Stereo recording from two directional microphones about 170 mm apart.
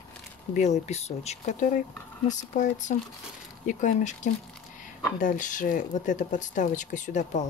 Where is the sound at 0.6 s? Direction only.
40° left (ahead or behind).